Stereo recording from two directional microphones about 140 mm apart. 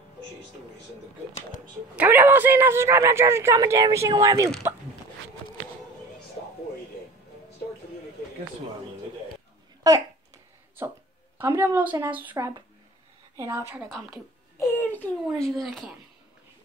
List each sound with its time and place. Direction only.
2.0 s speech: 15° right (ahead or behind)
9.8 s speech: 25° right (ahead or behind)
11.3 s speech: 20° right (ahead or behind)
14.6 s a child's voice: 15° left (ahead or behind)
15.3 s speech: centre (ahead or behind)